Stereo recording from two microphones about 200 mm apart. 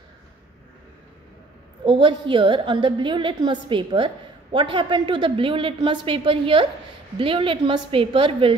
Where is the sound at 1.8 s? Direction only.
25° right (ahead or behind).